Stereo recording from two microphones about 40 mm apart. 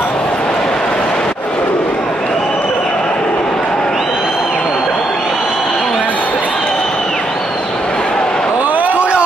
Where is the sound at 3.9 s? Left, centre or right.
Centre.